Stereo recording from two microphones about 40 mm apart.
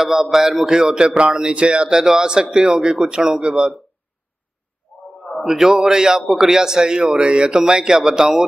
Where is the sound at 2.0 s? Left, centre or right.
Centre.